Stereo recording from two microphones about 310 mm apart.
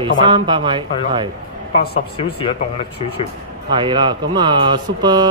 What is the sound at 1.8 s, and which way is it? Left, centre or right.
Speech, centre.